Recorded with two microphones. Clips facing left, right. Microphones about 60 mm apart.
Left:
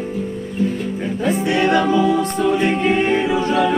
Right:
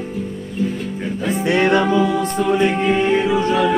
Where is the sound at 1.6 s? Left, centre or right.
Centre.